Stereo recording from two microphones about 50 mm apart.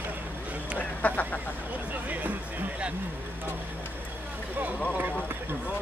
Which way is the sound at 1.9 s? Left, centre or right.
Right.